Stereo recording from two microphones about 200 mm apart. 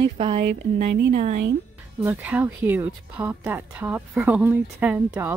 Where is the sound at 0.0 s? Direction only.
25° right (ahead or behind).